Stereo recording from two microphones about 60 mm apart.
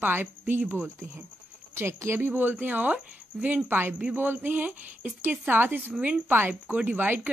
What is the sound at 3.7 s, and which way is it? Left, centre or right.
Speech, right.